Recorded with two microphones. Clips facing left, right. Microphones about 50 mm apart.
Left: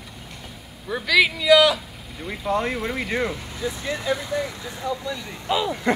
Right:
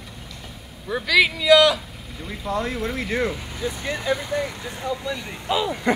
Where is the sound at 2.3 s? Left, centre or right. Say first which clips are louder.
Left 2 dB; left.